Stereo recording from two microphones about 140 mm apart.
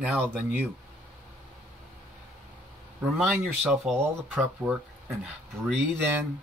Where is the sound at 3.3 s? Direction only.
5° right (ahead or behind).